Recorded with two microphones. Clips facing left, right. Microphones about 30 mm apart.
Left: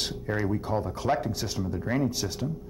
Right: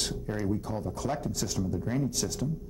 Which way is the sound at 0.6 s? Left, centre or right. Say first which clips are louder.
Left 4 dB; left.